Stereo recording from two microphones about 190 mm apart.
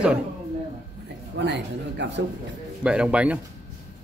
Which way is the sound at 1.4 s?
65° right (ahead or behind).